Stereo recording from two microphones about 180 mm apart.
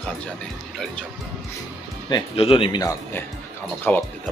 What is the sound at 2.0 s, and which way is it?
Speech, 30° left (ahead or behind).